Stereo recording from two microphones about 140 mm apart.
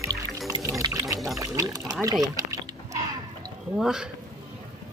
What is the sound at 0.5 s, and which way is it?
Water, 25° right (ahead or behind).